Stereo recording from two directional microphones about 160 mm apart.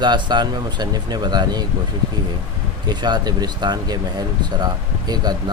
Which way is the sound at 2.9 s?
25° right (ahead or behind).